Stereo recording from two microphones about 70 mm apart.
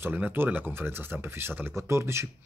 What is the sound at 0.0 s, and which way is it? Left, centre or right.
Speech, right.